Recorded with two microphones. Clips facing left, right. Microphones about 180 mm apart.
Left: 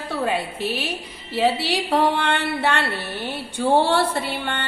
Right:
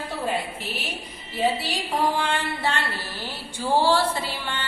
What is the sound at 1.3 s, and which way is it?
A woman's voice, 70° left (ahead or behind).